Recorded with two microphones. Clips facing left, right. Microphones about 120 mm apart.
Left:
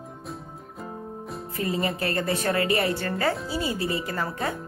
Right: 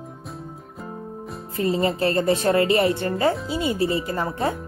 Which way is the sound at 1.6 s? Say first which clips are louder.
Right 6 dB; 30° right (ahead or behind).